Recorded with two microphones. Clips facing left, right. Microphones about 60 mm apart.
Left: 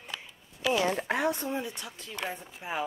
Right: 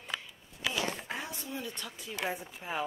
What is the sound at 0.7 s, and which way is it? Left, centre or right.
Speech, left.